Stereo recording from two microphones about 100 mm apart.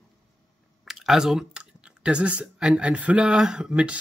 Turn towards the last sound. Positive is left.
turn(degrees=-5)  # may be behind; listen again after turning